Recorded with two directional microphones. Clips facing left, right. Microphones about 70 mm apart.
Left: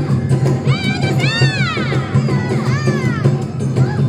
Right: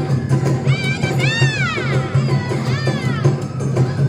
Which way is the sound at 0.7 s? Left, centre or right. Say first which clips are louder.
Left 2 dB; centre.